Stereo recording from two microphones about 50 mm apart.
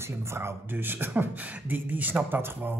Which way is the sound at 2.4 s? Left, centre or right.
Right.